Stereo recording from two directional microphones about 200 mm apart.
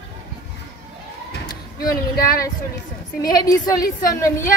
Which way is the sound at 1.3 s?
50° left (ahead or behind).